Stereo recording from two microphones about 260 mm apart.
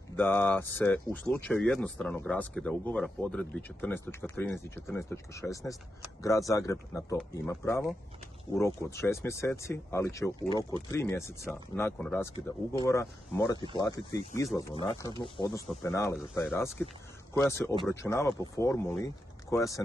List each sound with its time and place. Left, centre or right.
0.1 s speech: centre